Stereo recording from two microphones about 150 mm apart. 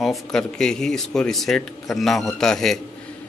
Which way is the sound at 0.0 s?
Centre (ahead or behind).